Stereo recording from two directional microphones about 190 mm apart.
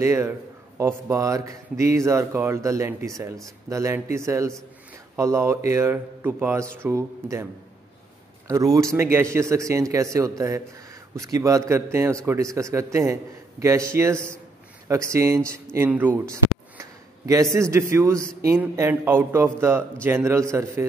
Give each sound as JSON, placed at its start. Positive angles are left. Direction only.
{"t": 0.0, "sound": "a man's voice", "side_deg": -15}
{"t": 8.5, "sound": "a man's voice", "side_deg": -20}